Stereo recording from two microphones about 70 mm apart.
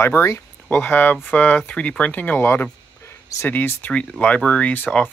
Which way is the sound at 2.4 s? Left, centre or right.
Left.